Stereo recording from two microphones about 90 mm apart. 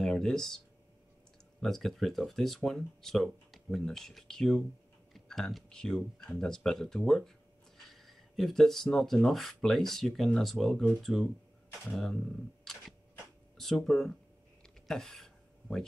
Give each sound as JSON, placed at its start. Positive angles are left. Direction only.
{"t": 0.0, "sound": "speech", "side_deg": 5}
{"t": 1.6, "sound": "speech", "side_deg": 5}
{"t": 14.6, "sound": "a sound", "side_deg": 5}